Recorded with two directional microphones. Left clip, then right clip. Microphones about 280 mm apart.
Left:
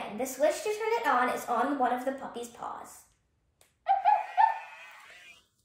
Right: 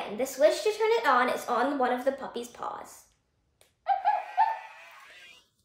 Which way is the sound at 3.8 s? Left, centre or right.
Centre.